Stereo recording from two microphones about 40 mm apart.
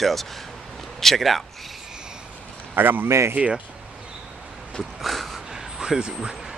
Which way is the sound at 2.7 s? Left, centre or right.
Right.